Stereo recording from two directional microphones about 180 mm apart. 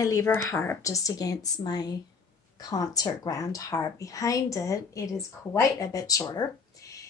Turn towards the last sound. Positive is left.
turn(degrees=20)  # may be behind; listen again after turning